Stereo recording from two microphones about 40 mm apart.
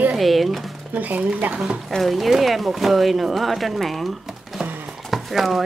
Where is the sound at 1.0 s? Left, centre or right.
Right.